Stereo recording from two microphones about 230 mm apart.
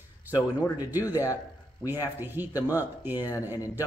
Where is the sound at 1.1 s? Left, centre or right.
Centre.